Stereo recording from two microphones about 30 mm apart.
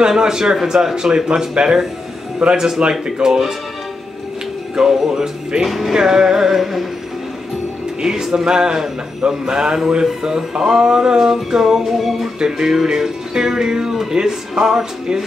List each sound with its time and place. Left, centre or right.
0.2 s music: right
2.4 s music: centre
2.8 s speech: right
3.3 s music: centre
4.8 s music: centre
5.7 s music: centre
5.9 s music: centre
8.0 s music: centre
10.6 s music: centre
11.8 s music: centre
12.4 s music: centre